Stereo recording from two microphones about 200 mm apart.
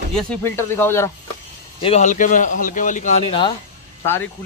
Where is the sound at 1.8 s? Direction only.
30° left (ahead or behind).